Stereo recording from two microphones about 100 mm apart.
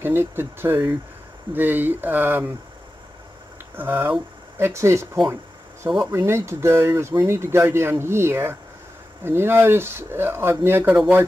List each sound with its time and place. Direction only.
0.0 s speech: 25° right (ahead or behind)
3.7 s speech: 20° right (ahead or behind)